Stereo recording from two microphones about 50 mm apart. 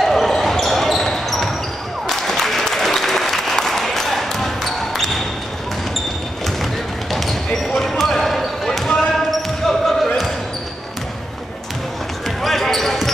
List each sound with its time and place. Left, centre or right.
0.0 s basketball bounce: centre
2.0 s applause: centre
6.4 s basketball bounce: centre
12.4 s basketball bounce: centre